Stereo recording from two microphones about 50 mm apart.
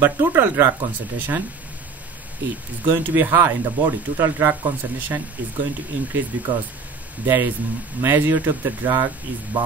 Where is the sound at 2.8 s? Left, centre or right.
Right.